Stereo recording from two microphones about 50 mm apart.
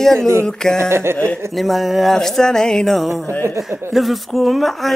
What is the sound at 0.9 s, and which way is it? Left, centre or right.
Speech, right.